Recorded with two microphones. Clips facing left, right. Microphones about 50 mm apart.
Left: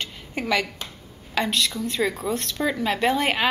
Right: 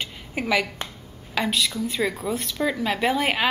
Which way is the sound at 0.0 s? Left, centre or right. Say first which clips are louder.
Right 1 dB; centre.